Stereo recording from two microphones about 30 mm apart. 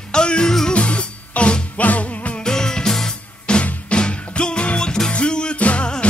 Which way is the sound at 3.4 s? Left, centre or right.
Left.